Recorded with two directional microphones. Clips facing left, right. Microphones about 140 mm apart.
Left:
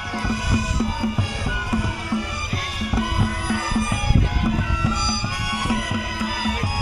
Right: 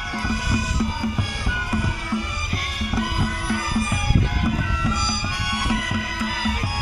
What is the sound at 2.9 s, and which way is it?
Music, 25° left (ahead or behind).